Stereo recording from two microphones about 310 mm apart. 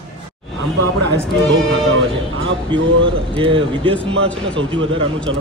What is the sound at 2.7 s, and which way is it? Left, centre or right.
A man's voice, centre.